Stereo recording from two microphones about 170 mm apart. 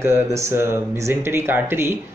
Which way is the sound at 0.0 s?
15° right (ahead or behind).